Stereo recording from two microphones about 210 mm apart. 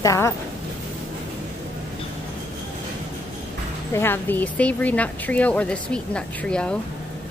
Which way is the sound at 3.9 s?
10° left (ahead or behind).